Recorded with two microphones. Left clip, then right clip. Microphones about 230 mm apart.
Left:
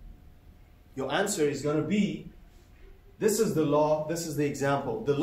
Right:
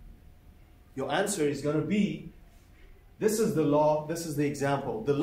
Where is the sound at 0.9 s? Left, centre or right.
Centre.